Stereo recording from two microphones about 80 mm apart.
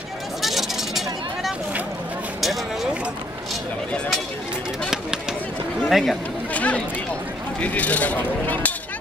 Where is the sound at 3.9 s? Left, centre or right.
Centre.